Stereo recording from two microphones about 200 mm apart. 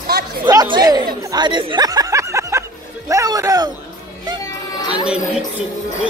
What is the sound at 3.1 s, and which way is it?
Music, 15° right (ahead or behind).